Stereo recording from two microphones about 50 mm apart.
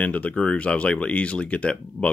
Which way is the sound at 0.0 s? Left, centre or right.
Left.